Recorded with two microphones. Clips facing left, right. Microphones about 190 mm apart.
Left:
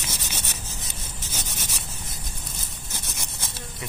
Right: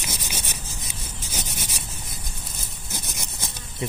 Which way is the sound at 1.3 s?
15° right (ahead or behind).